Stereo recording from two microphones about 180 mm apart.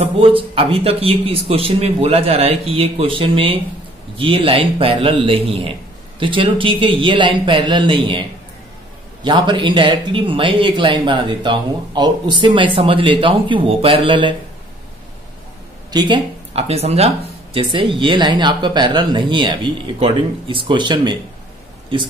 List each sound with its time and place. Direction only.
0.0 s a man's voice: 30° right (ahead or behind)
9.2 s speech: 25° right (ahead or behind)
15.9 s speech: 25° right (ahead or behind)